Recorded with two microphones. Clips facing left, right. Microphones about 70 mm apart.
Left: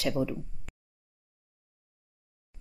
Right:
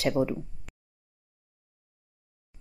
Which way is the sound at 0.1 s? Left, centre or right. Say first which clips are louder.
Right 4 dB; right.